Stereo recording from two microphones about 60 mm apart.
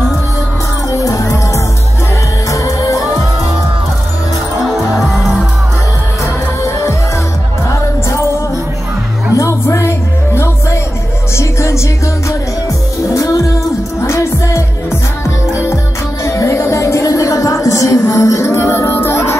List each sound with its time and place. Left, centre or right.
0.9 s music: left
4.6 s music: centre
6.2 s music: left
9.4 s music: left
13.0 s music: left